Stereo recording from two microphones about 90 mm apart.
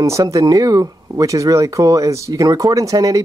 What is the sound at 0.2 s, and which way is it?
Speech, 40° right (ahead or behind).